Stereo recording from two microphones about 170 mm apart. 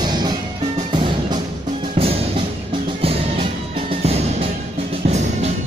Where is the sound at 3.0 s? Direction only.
35° right (ahead or behind).